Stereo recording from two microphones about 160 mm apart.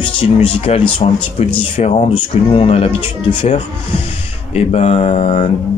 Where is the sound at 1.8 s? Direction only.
45° left (ahead or behind).